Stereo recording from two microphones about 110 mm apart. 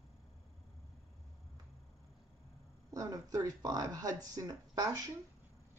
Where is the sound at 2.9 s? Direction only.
35° right (ahead or behind).